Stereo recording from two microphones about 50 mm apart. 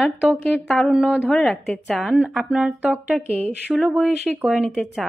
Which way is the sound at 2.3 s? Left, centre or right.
Centre.